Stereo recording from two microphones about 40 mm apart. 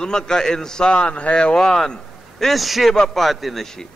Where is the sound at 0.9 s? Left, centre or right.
Left.